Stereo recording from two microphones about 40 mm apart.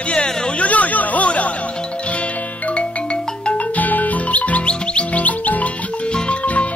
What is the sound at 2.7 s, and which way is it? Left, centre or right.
Music, left.